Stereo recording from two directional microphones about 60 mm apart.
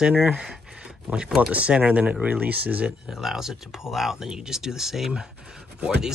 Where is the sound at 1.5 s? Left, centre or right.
Right.